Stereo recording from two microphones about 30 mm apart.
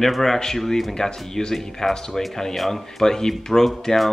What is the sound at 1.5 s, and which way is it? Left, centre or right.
Speech, centre.